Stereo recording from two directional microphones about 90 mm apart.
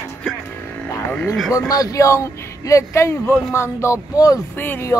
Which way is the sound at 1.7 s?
40° left (ahead or behind).